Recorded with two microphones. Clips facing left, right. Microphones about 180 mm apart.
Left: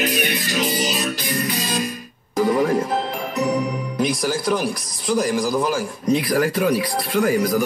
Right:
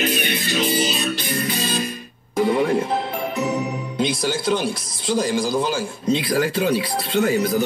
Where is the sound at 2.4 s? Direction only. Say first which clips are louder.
Even; 25° right (ahead or behind).